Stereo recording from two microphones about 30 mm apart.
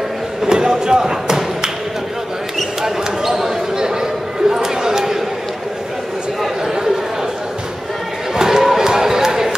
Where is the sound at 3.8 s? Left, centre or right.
Centre.